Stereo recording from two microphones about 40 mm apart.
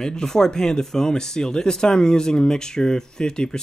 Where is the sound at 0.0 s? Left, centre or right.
Centre.